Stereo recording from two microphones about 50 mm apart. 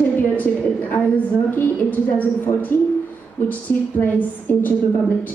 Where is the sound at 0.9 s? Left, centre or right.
Left.